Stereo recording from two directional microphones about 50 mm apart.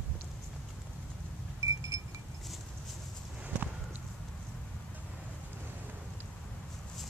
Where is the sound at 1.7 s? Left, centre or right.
Right.